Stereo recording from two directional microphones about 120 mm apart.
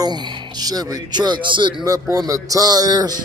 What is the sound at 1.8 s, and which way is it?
A man's voice, 30° right (ahead or behind).